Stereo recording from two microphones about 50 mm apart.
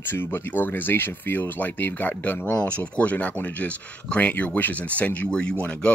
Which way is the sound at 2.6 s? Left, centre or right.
Left.